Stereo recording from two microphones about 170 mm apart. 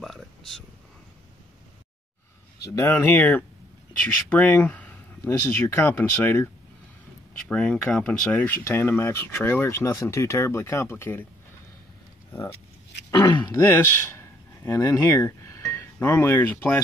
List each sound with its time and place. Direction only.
0.0 s a sound: centre (ahead or behind)
2.6 s speech: 15° left (ahead or behind)
13.1 s speech: 30° left (ahead or behind)
13.6 s speech: 15° left (ahead or behind)